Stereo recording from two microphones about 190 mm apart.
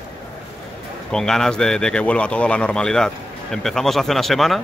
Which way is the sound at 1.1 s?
5° left (ahead or behind).